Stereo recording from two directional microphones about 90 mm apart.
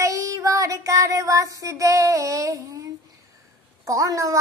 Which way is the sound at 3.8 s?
40° right (ahead or behind).